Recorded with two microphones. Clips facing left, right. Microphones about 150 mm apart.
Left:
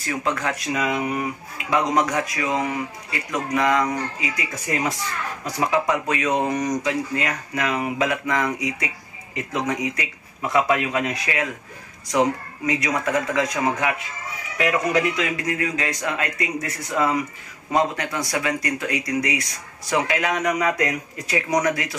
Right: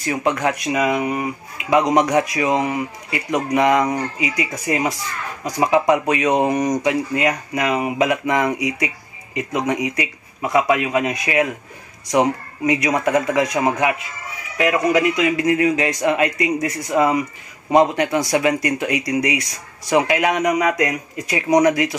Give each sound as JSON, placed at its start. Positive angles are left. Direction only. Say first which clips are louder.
{"t": 0.0, "sound": "a man's voice", "louder": "right 5 dB", "side_deg": -20}